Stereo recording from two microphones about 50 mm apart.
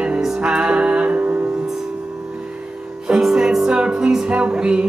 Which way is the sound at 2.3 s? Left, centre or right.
Right.